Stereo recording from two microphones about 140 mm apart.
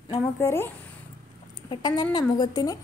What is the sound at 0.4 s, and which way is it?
Speech, 20° left (ahead or behind).